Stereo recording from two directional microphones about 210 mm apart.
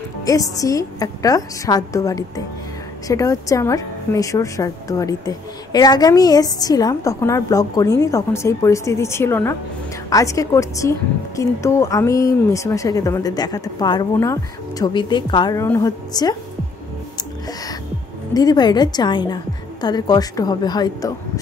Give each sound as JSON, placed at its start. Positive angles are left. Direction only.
{"t": 0.2, "sound": "a woman's voice", "side_deg": 15}
{"t": 18.3, "sound": "a woman's voice", "side_deg": 20}